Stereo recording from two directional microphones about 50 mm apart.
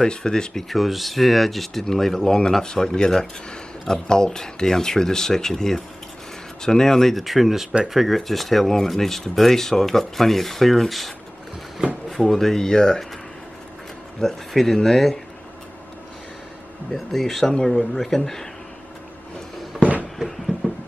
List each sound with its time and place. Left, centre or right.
0.0 s speech: centre
0.7 s speech: centre
14.2 s speech: centre
16.9 s speech: centre
19.8 s a sound: right
20.2 s a sound: centre